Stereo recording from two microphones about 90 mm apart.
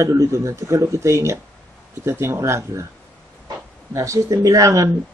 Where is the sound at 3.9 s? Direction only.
35° right (ahead or behind).